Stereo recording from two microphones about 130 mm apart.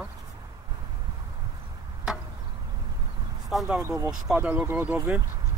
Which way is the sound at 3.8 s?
20° right (ahead or behind).